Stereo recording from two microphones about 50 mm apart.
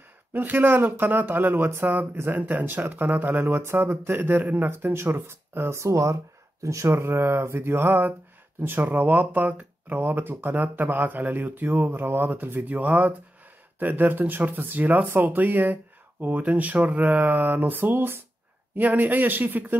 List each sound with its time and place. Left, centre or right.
0.3 s speech: right
2.2 s speech: right
5.8 s speech: right
6.9 s speech: right
18.8 s speech: right